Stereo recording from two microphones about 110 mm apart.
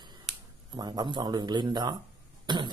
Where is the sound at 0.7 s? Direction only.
40° right (ahead or behind).